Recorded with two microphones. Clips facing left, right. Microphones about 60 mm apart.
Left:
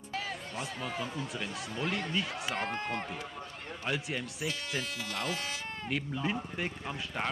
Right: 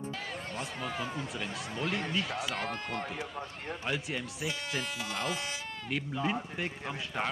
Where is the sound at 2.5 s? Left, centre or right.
Left.